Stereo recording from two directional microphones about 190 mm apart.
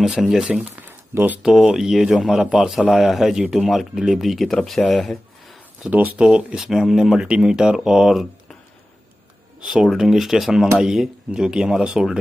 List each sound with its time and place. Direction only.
0.0 s speech: centre (ahead or behind)
9.7 s speech: centre (ahead or behind)